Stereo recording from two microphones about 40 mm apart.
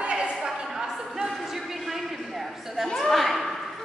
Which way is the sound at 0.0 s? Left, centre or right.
Right.